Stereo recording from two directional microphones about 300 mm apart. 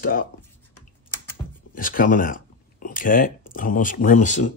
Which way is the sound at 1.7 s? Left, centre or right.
Left.